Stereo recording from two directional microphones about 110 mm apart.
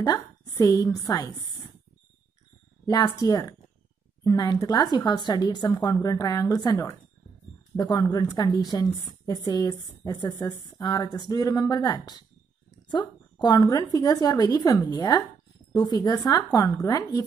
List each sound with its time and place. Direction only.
0.0 s speech: 35° left (ahead or behind)
2.9 s a woman's voice: 40° left (ahead or behind)